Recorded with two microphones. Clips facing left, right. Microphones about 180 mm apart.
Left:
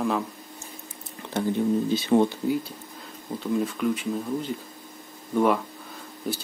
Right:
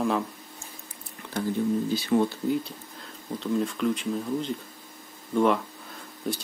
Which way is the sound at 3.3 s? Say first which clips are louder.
Left 1 dB; 5° left (ahead or behind).